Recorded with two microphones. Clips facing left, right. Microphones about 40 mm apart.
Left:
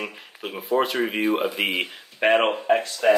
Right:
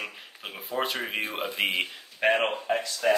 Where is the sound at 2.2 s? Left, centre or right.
Left.